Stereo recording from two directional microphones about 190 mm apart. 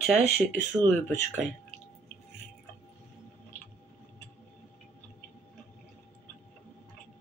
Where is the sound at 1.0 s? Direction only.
10° left (ahead or behind).